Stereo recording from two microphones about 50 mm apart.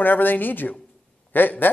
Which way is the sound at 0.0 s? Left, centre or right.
Left.